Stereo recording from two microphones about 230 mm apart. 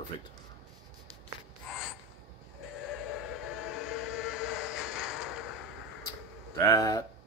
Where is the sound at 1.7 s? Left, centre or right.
Centre.